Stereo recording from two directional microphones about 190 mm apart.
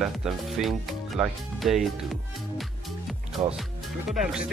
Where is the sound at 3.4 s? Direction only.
40° right (ahead or behind).